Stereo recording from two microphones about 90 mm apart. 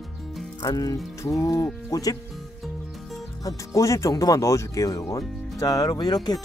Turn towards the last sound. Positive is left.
turn(degrees=50)  # may be behind; listen again after turning